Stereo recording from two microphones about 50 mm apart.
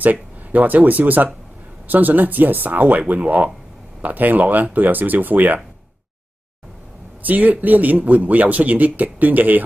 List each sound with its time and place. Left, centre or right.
0.0 s speech: right
7.2 s speech: right